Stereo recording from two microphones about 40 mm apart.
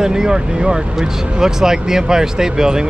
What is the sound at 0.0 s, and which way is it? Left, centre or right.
Speech, centre.